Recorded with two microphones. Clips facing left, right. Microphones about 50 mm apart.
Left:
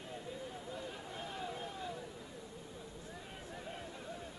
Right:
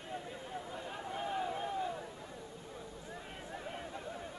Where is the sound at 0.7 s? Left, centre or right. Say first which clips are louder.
Right 3 dB; right.